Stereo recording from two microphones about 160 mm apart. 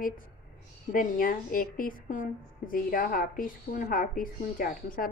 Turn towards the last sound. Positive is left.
turn(degrees=60)  # may be behind; listen again after turning